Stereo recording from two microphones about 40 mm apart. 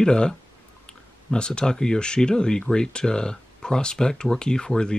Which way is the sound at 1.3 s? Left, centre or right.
Left.